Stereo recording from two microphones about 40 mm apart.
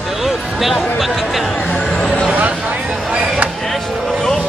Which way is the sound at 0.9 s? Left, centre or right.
Centre.